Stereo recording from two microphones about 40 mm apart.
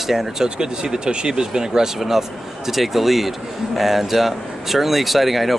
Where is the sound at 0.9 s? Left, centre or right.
Right; by 5.6 s centre.